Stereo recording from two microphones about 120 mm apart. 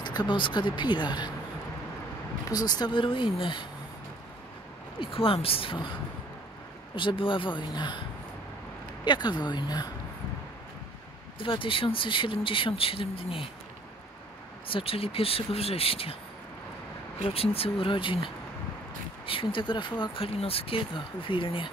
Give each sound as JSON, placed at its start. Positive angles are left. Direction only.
{"t": 0.0, "sound": "speech", "side_deg": 35}
{"t": 2.4, "sound": "speech", "side_deg": 35}
{"t": 5.0, "sound": "speech", "side_deg": 50}
{"t": 7.0, "sound": "speech", "side_deg": 45}
{"t": 9.0, "sound": "speech", "side_deg": 40}
{"t": 11.3, "sound": "speech", "side_deg": 45}
{"t": 14.7, "sound": "speech", "side_deg": 50}
{"t": 17.2, "sound": "speech", "side_deg": 55}
{"t": 20.3, "sound": "speech", "side_deg": 55}